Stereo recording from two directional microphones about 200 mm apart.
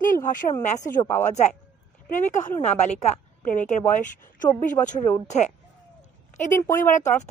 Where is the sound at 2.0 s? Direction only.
40° left (ahead or behind).